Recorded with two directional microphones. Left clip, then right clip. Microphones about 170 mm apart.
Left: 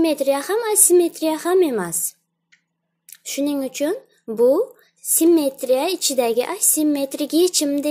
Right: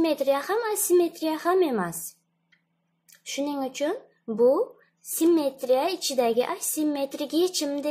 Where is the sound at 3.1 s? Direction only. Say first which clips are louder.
Left 6 dB; 25° left (ahead or behind).